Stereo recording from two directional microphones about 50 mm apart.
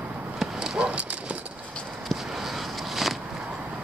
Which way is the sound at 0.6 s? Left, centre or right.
Centre.